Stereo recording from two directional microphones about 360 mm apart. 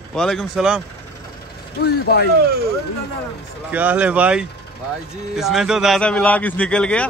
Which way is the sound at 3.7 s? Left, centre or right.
Centre.